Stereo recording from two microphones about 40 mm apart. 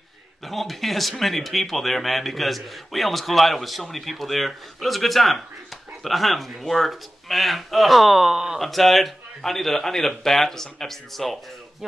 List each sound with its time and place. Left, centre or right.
0.4 s speech: centre
8.5 s a man's voice: centre